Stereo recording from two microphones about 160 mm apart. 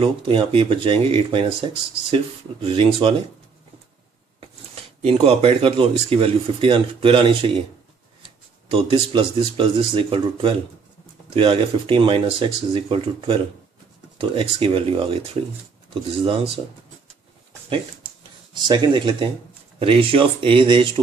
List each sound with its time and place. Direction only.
0.0 s speech: 35° right (ahead or behind)
5.0 s speech: 40° right (ahead or behind)
8.6 s speech: 35° right (ahead or behind)
18.5 s speech: 30° right (ahead or behind)